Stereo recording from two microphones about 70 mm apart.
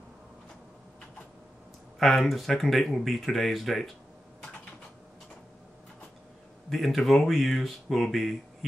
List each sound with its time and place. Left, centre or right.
2.0 s speech: centre
6.7 s speech: centre